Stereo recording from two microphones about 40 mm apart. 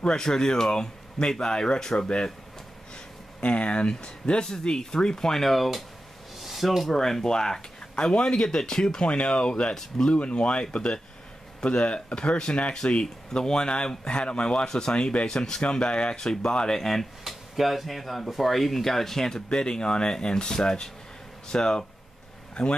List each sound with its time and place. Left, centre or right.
0.0 s speech: centre
3.3 s speech: left
7.9 s speech: left
9.8 s speech: centre
10.1 s speech: left
16.8 s speech: centre; by 22.8 s left